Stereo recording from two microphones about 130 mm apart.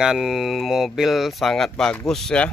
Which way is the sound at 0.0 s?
5° right (ahead or behind).